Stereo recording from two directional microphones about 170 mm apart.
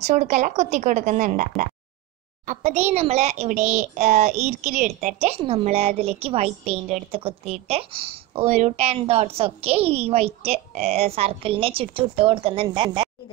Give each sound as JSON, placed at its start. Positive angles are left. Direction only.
{"t": 0.0, "sound": "a woman's voice", "side_deg": -40}